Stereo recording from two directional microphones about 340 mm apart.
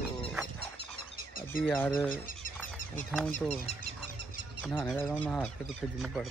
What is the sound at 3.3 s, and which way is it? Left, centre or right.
Speech, centre.